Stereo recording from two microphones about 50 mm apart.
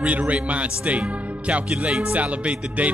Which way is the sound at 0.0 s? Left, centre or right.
Right.